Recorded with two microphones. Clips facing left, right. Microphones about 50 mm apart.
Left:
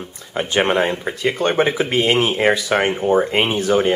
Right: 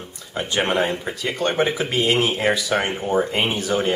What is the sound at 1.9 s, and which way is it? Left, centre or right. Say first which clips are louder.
Speech: left 3 dB; left.